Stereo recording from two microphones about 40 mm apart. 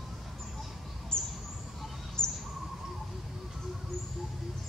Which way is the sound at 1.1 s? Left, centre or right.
Centre.